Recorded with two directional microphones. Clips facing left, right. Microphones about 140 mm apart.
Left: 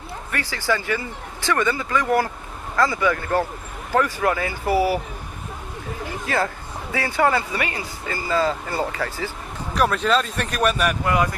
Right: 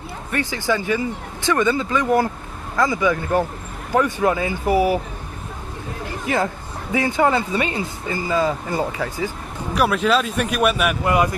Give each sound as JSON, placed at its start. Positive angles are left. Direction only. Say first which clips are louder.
{"t": 0.3, "sound": "speech", "louder": "right 3 dB", "side_deg": -20}
{"t": 6.2, "sound": "speech", "louder": "right 2 dB", "side_deg": -15}